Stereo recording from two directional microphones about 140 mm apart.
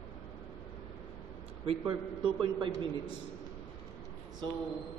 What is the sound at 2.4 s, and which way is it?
Speech, 35° right (ahead or behind).